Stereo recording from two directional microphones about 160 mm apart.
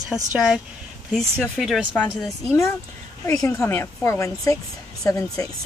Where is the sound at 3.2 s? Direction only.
20° left (ahead or behind).